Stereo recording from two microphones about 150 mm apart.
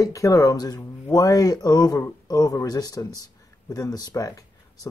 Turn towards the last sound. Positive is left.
turn(degrees=25)  # may be behind; listen again after turning